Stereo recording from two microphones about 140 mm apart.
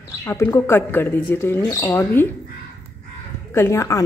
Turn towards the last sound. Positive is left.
turn(degrees=20)  # may be behind; listen again after turning